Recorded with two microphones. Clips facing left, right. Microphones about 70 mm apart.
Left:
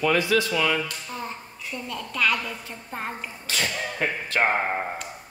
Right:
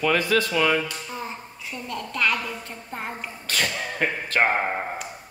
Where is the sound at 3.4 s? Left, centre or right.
Right.